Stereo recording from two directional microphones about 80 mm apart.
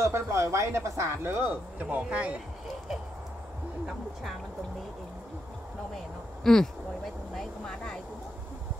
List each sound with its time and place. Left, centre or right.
0.0 s speech: right; by 2.3 s centre
3.8 s speech: centre
6.4 s speech: centre